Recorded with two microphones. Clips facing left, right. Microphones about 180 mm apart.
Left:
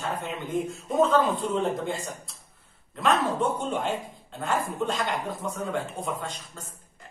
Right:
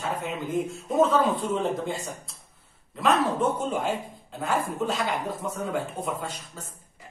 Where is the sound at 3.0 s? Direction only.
Centre (ahead or behind).